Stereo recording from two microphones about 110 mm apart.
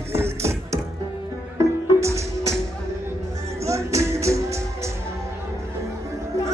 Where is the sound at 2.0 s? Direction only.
25° right (ahead or behind).